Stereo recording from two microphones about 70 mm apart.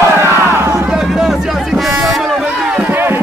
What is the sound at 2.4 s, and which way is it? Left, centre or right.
Run, centre.